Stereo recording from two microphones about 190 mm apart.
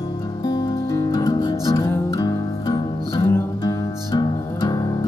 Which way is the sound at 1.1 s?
20° left (ahead or behind).